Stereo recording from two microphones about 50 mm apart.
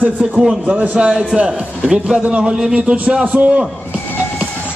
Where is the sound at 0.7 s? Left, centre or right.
Right.